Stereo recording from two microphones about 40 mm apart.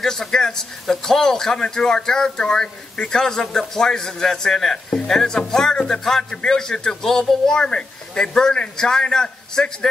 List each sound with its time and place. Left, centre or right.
0.0 s a man's voice: centre